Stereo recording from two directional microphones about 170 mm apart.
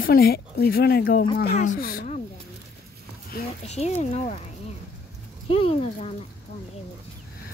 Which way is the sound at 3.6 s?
40° left (ahead or behind).